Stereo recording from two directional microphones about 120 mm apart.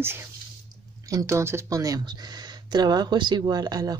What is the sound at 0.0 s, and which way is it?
Speech, 20° right (ahead or behind).